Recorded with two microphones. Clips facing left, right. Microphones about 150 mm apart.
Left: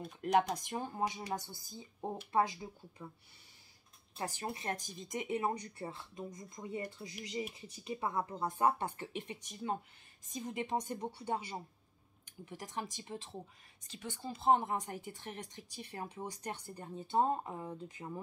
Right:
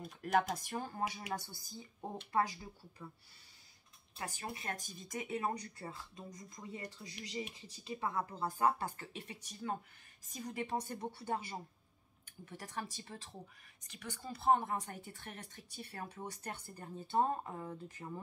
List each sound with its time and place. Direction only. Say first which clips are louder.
0.2 s a woman's voice: left 2 dB; 15° left (ahead or behind)
4.2 s a woman's voice: left 4 dB; 25° left (ahead or behind)